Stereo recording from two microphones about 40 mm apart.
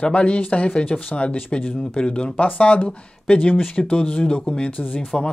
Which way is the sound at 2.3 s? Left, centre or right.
Left.